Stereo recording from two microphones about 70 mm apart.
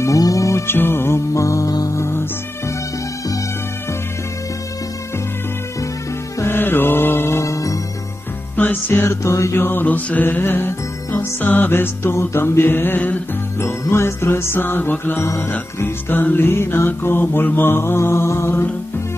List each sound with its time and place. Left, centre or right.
0.0 s music: left
2.0 s music: left
6.4 s music: left
8.5 s music: left
13.6 s music: left
15.2 s music: left
15.8 s music: left